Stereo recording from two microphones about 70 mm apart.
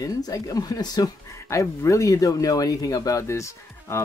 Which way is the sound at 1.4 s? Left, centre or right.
Left.